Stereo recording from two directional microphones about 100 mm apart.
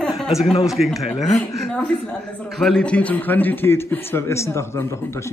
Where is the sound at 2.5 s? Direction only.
Centre (ahead or behind).